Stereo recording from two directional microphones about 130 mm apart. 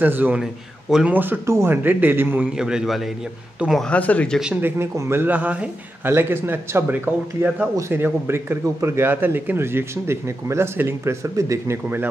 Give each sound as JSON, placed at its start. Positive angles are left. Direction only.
{"t": 0.0, "sound": "speech", "side_deg": -15}
{"t": 3.8, "sound": "speech", "side_deg": 10}
{"t": 4.4, "sound": "speech", "side_deg": -10}